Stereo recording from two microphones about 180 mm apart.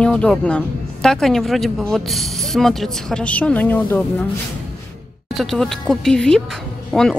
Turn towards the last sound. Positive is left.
turn(degrees=0)  # may be behind; listen again after turning